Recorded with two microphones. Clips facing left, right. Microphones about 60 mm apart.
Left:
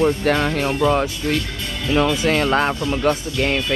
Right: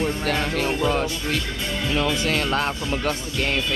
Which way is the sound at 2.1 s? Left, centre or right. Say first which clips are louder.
Left 5 dB; centre.